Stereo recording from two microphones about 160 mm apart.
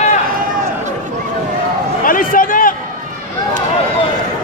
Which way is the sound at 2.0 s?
60° left (ahead or behind).